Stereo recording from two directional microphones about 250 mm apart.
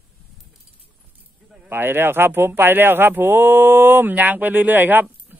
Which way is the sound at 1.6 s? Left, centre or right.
Centre.